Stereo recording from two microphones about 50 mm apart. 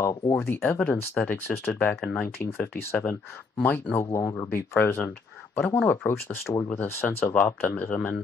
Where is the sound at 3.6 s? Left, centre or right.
Left.